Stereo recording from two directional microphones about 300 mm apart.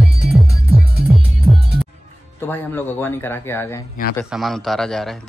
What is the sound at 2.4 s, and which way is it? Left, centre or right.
A man's voice, centre.